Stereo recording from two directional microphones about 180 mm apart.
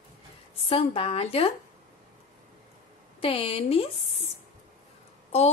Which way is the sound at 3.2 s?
30° left (ahead or behind).